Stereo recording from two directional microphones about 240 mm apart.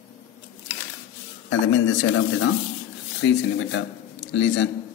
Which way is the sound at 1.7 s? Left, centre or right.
Left.